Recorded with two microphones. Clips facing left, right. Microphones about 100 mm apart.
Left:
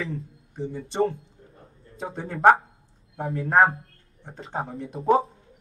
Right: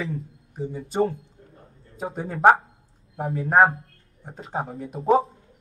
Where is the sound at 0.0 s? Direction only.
Centre (ahead or behind).